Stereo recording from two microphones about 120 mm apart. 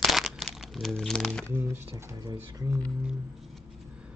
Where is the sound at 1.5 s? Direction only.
25° right (ahead or behind).